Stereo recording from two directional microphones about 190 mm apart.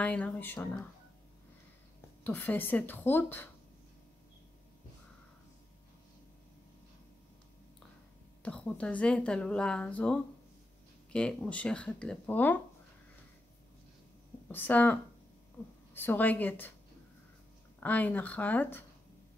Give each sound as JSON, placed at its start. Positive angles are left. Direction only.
{"t": 0.0, "sound": "a woman's voice", "side_deg": 5}
{"t": 2.2, "sound": "a woman's voice", "side_deg": 10}
{"t": 8.4, "sound": "a woman's voice", "side_deg": 5}
{"t": 14.5, "sound": "a woman's voice", "side_deg": 10}
{"t": 15.6, "sound": "a sound", "side_deg": 20}
{"t": 15.9, "sound": "a woman's voice", "side_deg": 10}
{"t": 17.7, "sound": "a woman's voice", "side_deg": 10}